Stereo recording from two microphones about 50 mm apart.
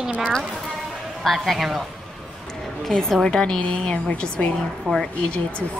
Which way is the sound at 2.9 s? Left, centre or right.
Centre.